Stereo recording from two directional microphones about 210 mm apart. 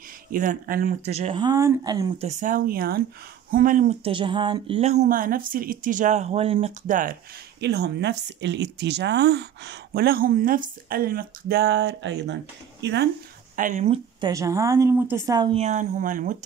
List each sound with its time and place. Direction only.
0.3 s a woman's voice: 40° right (ahead or behind); by 2.2 s 20° right (ahead or behind)
2.2 s speech: 40° right (ahead or behind)
7.6 s speech: 50° right (ahead or behind)
13.6 s speech: 35° right (ahead or behind)
14.2 s a woman's voice: 15° right (ahead or behind); by 16.3 s 40° right (ahead or behind)